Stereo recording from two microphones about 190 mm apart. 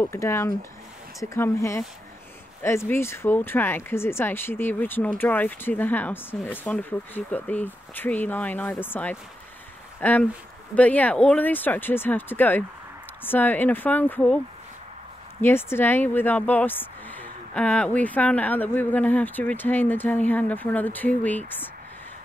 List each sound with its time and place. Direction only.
0.0 s speech: 15° left (ahead or behind)
15.4 s speech: 10° left (ahead or behind)